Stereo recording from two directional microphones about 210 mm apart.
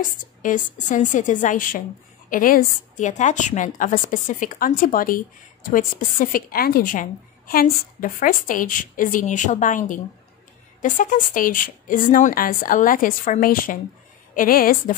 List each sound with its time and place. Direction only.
0.2 s a woman's voice: 40° left (ahead or behind)